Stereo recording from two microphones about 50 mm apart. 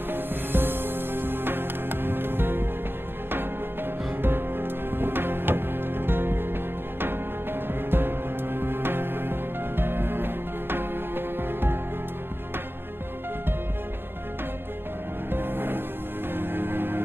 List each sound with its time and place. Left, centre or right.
0.1 s music: right
4.2 s music: right
7.6 s music: right
15.2 s music: right